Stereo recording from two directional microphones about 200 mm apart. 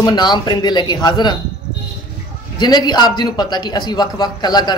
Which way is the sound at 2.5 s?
20° left (ahead or behind).